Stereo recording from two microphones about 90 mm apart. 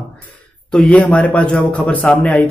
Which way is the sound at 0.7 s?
15° left (ahead or behind).